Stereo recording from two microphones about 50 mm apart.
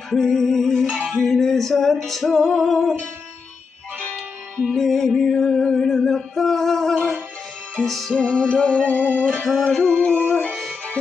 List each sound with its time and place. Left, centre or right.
0.1 s music: centre
4.7 s music: centre
8.1 s music: centre
8.8 s music: left
9.5 s music: centre